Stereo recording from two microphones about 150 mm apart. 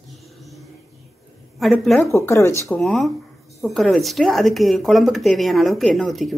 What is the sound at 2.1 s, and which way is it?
Speech, 20° left (ahead or behind).